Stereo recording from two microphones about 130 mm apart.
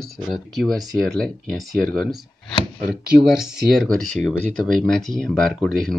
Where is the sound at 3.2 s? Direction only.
5° right (ahead or behind).